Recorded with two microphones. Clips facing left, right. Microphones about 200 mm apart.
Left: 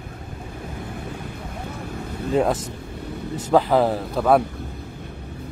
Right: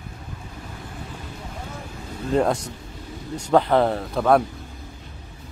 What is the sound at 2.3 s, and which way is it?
Speech, 5° left (ahead or behind).